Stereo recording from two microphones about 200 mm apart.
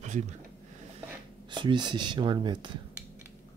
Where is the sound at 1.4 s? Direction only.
25° right (ahead or behind).